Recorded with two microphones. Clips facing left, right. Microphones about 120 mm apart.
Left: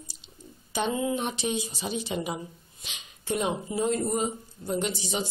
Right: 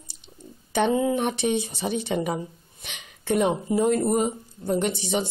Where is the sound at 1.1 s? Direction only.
60° right (ahead or behind).